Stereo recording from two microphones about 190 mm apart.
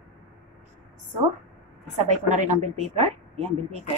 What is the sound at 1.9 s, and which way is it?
A woman's voice, 40° right (ahead or behind).